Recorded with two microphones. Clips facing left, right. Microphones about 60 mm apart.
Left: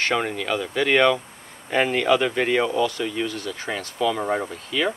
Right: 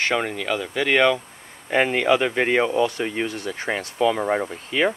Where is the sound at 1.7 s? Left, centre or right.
Centre.